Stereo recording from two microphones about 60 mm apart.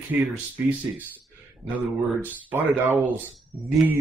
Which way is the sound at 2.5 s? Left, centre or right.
Right.